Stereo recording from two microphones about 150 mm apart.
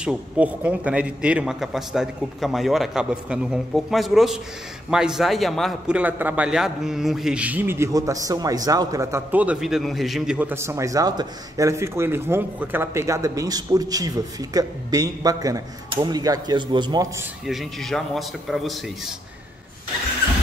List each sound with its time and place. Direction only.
0.0 s a man's voice: 5° right (ahead or behind); by 17.1 s 30° right (ahead or behind)
17.5 s a man's voice: centre (ahead or behind)